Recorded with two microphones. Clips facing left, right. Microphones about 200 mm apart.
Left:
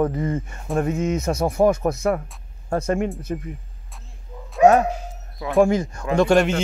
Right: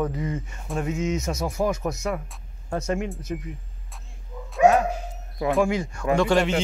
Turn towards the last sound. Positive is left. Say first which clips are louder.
# left 3 dB
turn(degrees=45)  # may be behind; listen again after turning